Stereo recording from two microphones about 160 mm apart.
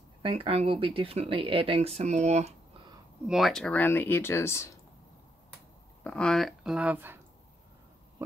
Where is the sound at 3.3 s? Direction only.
Centre (ahead or behind); by 4.6 s 15° left (ahead or behind).